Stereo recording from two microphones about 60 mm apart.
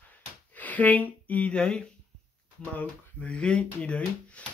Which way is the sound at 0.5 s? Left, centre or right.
Left.